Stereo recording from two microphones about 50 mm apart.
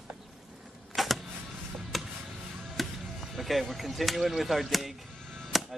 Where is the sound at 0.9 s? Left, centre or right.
Centre.